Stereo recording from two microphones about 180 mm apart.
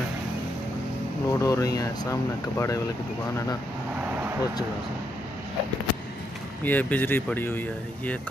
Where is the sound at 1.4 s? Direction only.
20° left (ahead or behind).